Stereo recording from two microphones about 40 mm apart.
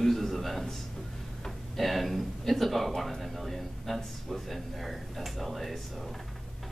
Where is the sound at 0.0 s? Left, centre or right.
Centre.